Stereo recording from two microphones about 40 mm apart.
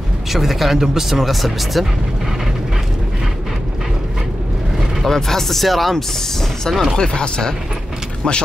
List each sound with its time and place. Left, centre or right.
0.3 s speech: centre
5.0 s speech: centre
7.0 s speech: centre